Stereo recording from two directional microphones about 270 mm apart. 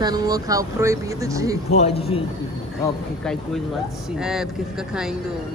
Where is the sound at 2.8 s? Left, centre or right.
Centre.